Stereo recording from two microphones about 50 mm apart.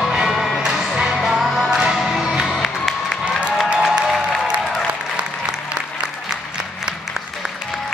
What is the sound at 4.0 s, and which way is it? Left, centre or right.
Music, centre.